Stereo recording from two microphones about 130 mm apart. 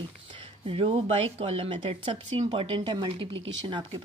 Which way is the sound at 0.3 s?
45° right (ahead or behind).